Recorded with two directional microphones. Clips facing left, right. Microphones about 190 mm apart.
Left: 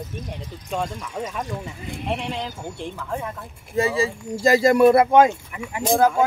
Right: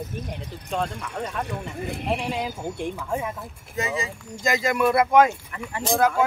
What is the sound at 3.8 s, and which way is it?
Speech, 30° left (ahead or behind).